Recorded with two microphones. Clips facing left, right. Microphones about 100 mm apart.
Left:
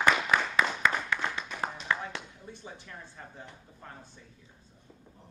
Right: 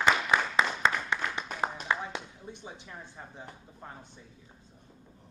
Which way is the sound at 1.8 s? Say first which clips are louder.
Right 1 dB; 20° right (ahead or behind).